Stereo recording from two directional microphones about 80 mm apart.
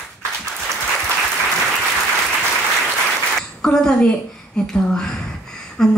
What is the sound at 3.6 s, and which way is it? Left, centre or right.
A woman's voice, centre.